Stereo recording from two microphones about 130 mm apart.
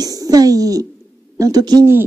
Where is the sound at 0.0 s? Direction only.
30° right (ahead or behind).